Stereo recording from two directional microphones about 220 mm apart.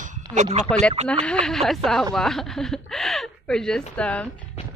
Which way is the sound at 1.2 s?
5° left (ahead or behind).